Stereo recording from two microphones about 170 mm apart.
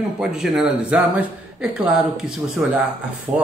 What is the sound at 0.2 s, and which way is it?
Speech, 5° right (ahead or behind).